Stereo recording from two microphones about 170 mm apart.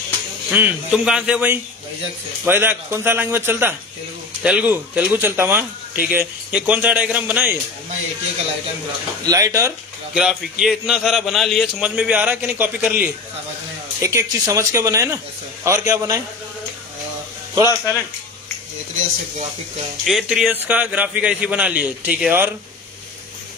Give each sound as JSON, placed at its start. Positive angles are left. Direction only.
{"t": 0.5, "sound": "speech", "side_deg": -10}
{"t": 9.2, "sound": "speech", "side_deg": -20}
{"t": 10.1, "sound": "a man's voice", "side_deg": -5}
{"t": 14.0, "sound": "speech", "side_deg": -20}
{"t": 17.6, "sound": "speech", "side_deg": 20}
{"t": 20.1, "sound": "speech", "side_deg": 0}